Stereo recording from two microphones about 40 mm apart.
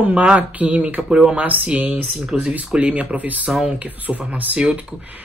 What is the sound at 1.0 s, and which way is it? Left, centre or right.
Speech, centre.